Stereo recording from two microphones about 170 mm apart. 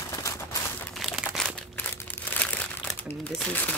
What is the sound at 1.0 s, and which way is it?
Crumpling, centre (ahead or behind).